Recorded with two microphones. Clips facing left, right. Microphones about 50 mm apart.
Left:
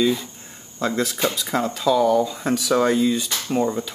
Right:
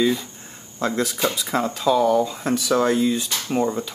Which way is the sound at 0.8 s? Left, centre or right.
Centre.